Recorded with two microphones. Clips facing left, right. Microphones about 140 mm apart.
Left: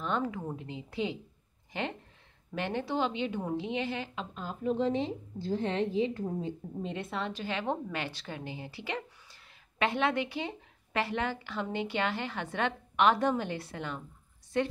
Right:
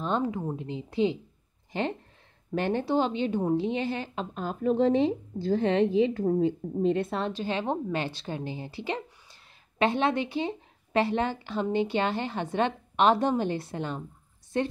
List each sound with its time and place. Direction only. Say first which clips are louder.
0.0 s a woman's voice: right 4 dB; 25° right (ahead or behind); by 6.5 s 70° right (ahead or behind)
6.8 s a woman's voice: right 10 dB; 45° right (ahead or behind)
7.3 s a woman's voice: right 4 dB; 30° right (ahead or behind)